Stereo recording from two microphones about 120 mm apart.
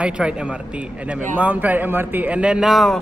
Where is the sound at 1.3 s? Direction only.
15° right (ahead or behind).